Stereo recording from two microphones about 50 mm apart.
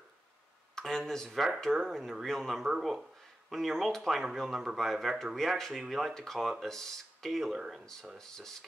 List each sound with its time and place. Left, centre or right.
0.7 s speech: centre
7.5 s speech: centre
7.8 s speech: centre